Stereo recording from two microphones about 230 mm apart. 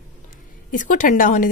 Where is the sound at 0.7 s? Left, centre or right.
Left.